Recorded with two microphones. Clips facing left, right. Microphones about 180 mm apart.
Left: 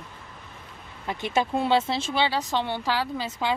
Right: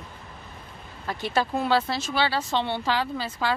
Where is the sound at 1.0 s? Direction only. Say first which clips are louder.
Even; 20° left (ahead or behind).